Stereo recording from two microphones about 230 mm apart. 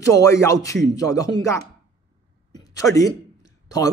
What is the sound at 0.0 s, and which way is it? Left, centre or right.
A man's voice, centre.